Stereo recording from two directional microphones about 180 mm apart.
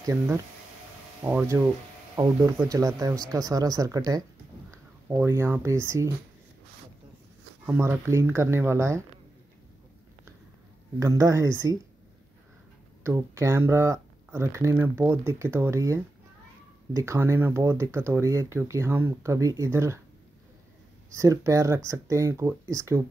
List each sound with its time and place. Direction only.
0.0 s speech: 15° right (ahead or behind)
7.6 s speech: 10° right (ahead or behind)
11.0 s speech: 20° right (ahead or behind)
13.0 s speech: 15° right (ahead or behind)
21.2 s speech: 15° right (ahead or behind)